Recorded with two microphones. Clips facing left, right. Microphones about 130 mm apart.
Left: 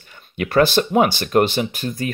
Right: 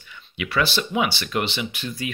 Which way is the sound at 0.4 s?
45° left (ahead or behind).